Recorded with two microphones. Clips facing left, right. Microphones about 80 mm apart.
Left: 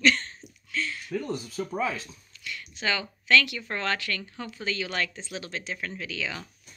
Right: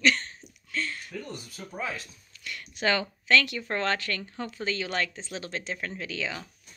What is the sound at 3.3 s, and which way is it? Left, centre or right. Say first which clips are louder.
Speech: left 1 dB; right.